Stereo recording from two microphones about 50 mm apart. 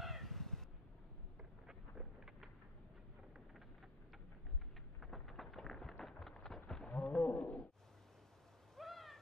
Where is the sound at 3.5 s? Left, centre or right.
Centre.